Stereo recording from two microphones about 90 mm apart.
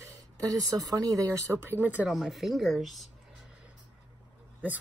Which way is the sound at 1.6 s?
20° right (ahead or behind).